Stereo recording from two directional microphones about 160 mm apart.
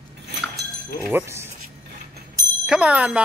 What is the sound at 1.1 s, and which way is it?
Speech, 15° right (ahead or behind).